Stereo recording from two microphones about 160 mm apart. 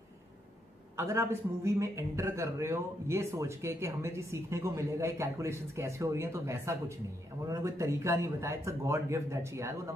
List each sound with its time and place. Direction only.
0.9 s a man's voice: 15° right (ahead or behind)